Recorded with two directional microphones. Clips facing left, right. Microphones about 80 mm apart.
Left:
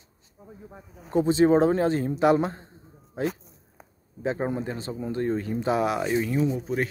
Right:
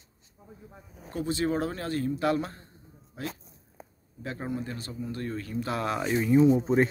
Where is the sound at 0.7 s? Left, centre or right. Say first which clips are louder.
Left 3 dB; left.